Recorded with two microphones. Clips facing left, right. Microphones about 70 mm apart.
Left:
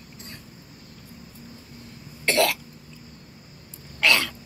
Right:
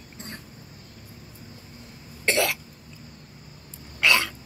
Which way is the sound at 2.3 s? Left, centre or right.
Right.